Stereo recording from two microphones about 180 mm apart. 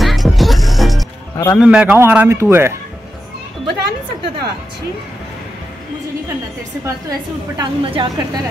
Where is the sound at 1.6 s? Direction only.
5° right (ahead or behind).